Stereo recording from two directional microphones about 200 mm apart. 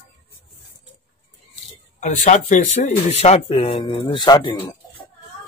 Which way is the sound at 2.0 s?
40° left (ahead or behind).